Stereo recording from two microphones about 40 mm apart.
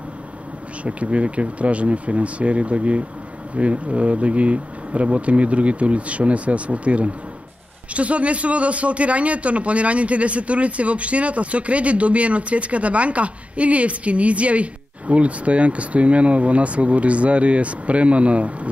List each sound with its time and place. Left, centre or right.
0.8 s a man's voice: right